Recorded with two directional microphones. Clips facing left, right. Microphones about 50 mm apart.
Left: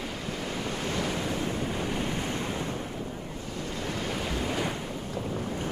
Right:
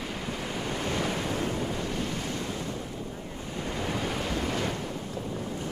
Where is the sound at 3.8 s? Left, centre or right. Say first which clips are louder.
Right 1 dB; centre.